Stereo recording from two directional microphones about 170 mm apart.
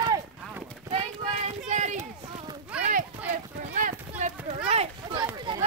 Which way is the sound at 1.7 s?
45° right (ahead or behind).